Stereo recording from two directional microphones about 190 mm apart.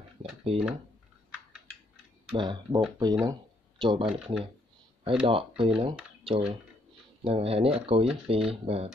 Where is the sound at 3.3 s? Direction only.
25° right (ahead or behind).